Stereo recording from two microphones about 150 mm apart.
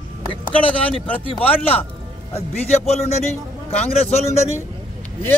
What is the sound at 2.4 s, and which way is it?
Speech, 45° left (ahead or behind).